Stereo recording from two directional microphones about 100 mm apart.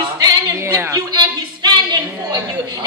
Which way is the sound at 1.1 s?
50° right (ahead or behind).